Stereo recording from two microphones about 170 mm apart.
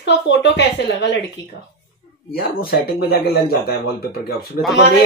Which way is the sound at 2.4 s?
60° left (ahead or behind).